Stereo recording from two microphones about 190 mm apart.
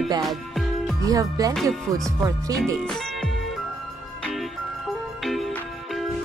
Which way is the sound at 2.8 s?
5° left (ahead or behind).